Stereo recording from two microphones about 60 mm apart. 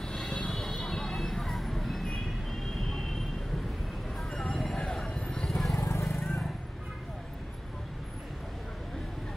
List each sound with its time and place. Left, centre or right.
0.0 s a sound: centre
0.5 s vehicle: centre
4.2 s vehicle: centre
4.9 s clip-clop: centre
5.8 s vehicle: left
6.0 s vehicle: centre